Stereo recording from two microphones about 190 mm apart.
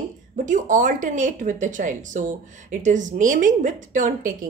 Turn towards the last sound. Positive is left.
turn(degrees=-40)  # may be behind; listen again after turning